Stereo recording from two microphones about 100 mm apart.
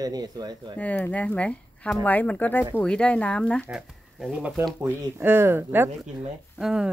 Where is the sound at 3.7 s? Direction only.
10° right (ahead or behind).